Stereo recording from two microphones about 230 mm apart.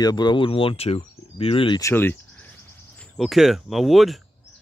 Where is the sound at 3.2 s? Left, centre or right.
Centre.